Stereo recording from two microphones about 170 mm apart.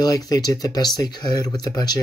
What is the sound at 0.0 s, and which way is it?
Speech, 20° left (ahead or behind).